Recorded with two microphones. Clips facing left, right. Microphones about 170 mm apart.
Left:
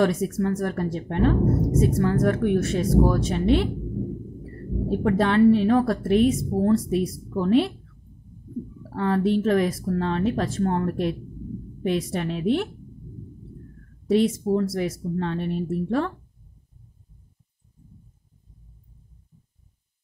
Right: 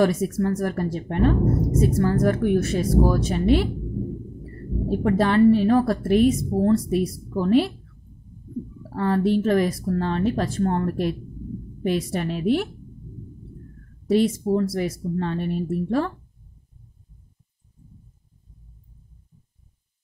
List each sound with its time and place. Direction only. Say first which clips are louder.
0.0 s speech: right 1 dB; 5° right (ahead or behind)
4.8 s speech: right 1 dB; centre (ahead or behind)
8.9 s speech: right 1 dB; centre (ahead or behind)
14.0 s speech: right 1 dB; centre (ahead or behind)